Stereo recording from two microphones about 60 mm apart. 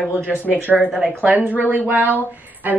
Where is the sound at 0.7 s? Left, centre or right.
Right.